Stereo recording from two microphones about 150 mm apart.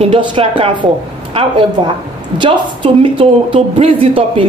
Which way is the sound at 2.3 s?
35° right (ahead or behind).